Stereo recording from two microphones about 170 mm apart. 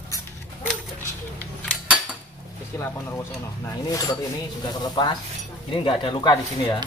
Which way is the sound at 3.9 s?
20° left (ahead or behind).